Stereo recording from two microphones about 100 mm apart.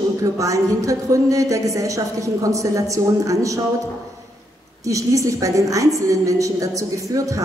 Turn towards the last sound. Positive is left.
turn(degrees=-35)  # may be behind; listen again after turning